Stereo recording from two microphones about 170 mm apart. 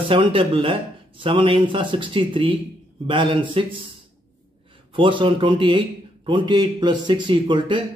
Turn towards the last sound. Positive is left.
turn(degrees=-30)  # may be behind; listen again after turning